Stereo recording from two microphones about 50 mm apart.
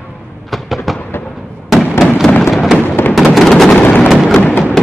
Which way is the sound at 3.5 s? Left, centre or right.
Centre.